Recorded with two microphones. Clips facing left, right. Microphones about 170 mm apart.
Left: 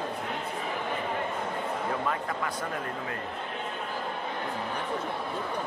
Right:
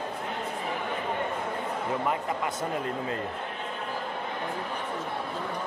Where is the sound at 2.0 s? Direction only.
20° right (ahead or behind).